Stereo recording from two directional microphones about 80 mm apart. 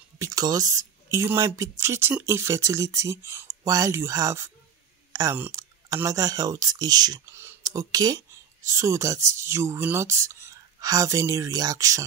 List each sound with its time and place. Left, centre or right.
0.2 s speech: right
1.1 s a woman's voice: right
5.1 s a woman's voice: right
7.2 s speech: right
7.6 s speech: right
8.6 s a woman's voice: right